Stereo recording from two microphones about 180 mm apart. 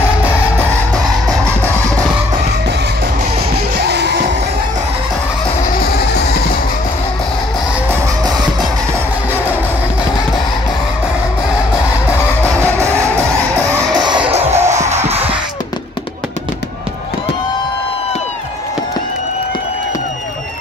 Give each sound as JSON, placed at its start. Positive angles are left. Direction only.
{"t": 3.8, "sound": "music", "side_deg": -70}
{"t": 8.2, "sound": "music", "side_deg": -20}
{"t": 12.4, "sound": "music", "side_deg": -15}
{"t": 14.3, "sound": "music", "side_deg": -35}